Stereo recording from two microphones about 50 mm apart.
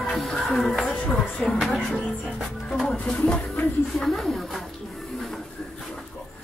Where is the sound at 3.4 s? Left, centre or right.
Left.